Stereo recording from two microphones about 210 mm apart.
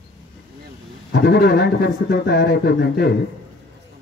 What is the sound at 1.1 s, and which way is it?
Speech, 50° left (ahead or behind).